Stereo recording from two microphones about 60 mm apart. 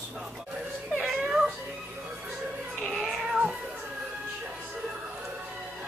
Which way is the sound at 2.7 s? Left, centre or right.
Centre.